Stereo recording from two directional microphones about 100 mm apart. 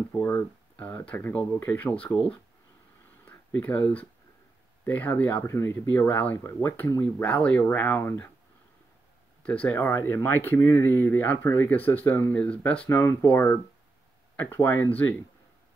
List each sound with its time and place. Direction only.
0.1 s speech: 20° left (ahead or behind)
2.1 s speech: 10° left (ahead or behind)
9.4 s speech: 15° left (ahead or behind)